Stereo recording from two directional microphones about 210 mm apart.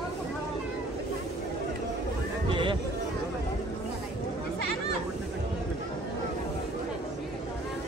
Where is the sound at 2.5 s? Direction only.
25° right (ahead or behind).